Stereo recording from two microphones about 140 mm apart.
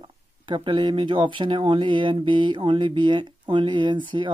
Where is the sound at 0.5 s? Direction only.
35° right (ahead or behind).